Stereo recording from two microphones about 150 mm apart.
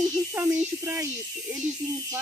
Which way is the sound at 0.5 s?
20° right (ahead or behind).